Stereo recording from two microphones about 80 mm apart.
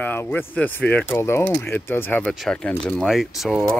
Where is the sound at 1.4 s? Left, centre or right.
Centre.